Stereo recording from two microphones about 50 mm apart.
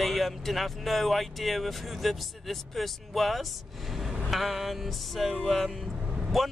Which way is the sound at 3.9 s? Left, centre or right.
Centre.